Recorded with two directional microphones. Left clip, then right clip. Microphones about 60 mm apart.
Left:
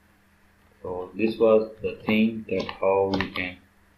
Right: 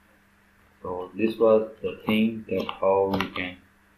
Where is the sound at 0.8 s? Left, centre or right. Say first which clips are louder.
Even; centre.